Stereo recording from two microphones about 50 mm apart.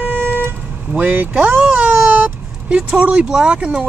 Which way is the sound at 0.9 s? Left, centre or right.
Right.